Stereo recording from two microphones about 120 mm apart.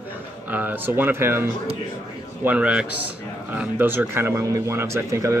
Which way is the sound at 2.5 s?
10° right (ahead or behind).